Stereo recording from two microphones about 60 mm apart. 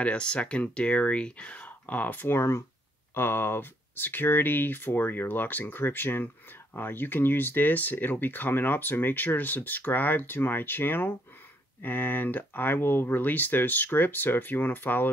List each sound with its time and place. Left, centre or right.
0.0 s speech: centre